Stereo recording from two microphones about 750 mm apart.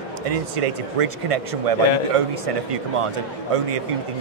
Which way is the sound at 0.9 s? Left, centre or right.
Right.